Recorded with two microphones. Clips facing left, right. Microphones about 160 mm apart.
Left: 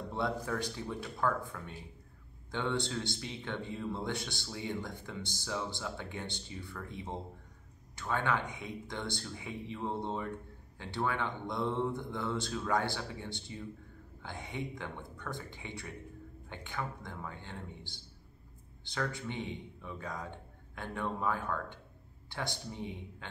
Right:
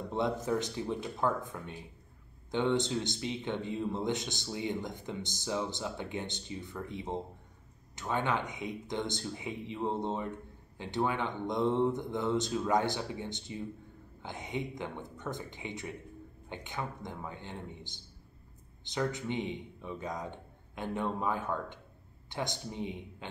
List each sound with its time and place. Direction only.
0.1 s a man's voice: 20° right (ahead or behind)